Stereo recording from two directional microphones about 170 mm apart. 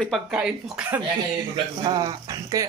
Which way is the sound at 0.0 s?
Centre (ahead or behind).